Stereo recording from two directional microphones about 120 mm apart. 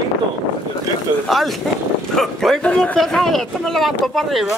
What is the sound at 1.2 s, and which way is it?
Speech, centre (ahead or behind).